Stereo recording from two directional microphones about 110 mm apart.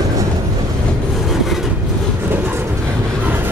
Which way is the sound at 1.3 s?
Centre (ahead or behind).